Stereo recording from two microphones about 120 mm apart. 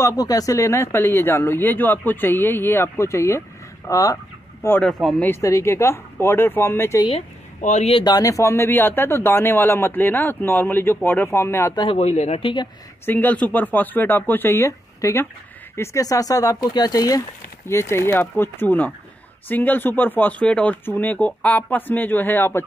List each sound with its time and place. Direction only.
0.0 s speech: 30° left (ahead or behind)
7.6 s speech: 80° left
7.9 s speech: 35° left (ahead or behind)
11.9 s a man's voice: 65° left (ahead or behind); by 12.6 s 50° left (ahead or behind)
13.0 s speech: 15° left (ahead or behind)